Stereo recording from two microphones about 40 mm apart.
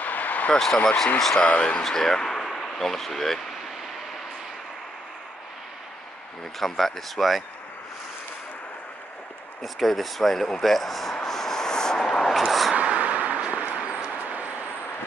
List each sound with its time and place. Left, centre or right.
0.0 s a sound: left
0.8 s speech: centre
1.5 s speech: left
1.8 s speech: centre
6.6 s speech: centre
9.6 s speech: centre
11.2 s vehicle: centre
12.3 s speech: centre
12.7 s vehicle: right